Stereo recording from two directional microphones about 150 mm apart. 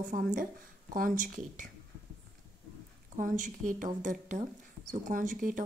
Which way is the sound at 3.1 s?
60° right (ahead or behind).